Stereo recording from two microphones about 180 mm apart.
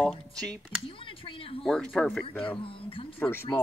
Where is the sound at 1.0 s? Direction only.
30° left (ahead or behind).